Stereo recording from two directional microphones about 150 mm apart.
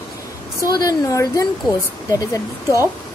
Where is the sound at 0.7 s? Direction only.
25° left (ahead or behind).